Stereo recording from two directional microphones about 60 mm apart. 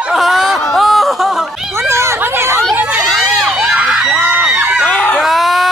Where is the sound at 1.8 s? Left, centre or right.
Right.